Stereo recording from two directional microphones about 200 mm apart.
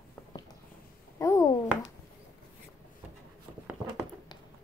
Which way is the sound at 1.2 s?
15° left (ahead or behind).